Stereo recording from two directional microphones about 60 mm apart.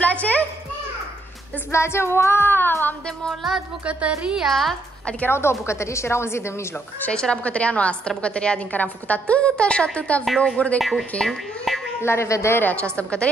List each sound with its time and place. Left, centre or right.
0.0 s music: left
1.7 s a woman's voice: left
3.3 s speech: centre
3.8 s a woman's voice: centre
4.5 s speech: centre
5.3 s a woman's voice: left
7.1 s a woman's voice: centre
10.8 s speech: centre
12.0 s a woman's voice: left
12.8 s a woman's voice: centre